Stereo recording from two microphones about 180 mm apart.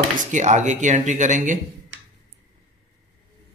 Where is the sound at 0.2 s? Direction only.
40° right (ahead or behind).